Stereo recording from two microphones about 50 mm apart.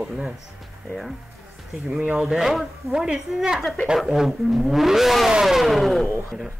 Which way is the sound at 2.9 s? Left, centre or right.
Centre.